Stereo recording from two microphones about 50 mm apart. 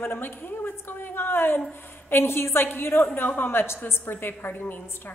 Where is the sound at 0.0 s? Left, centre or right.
Left.